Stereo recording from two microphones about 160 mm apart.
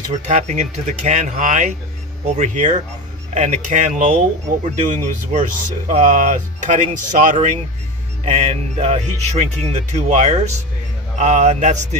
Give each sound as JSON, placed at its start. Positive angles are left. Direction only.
{"t": 0.2, "sound": "speech", "side_deg": -45}